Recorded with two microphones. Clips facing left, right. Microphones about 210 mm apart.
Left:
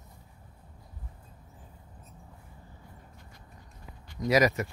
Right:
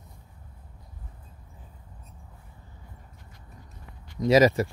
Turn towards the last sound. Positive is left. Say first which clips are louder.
# right 5 dB
turn(degrees=-30)  # may be behind; listen again after turning